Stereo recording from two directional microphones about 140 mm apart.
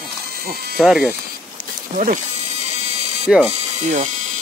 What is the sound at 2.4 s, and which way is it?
Music, 50° right (ahead or behind).